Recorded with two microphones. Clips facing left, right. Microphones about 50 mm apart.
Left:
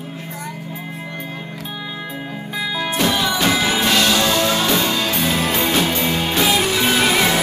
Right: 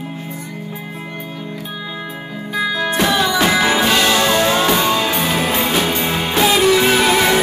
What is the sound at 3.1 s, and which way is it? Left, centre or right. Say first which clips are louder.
Music: right 3 dB; right.